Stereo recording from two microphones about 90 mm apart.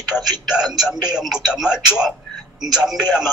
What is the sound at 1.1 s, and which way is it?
Speech, 5° right (ahead or behind).